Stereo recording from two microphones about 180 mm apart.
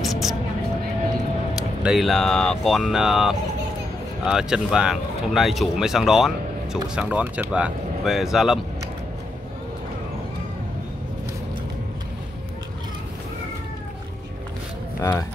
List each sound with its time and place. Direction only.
0.0 s vehicle: centre (ahead or behind)
1.5 s speech: 5° right (ahead or behind)